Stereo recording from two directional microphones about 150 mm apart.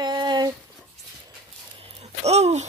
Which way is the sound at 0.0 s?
30° right (ahead or behind).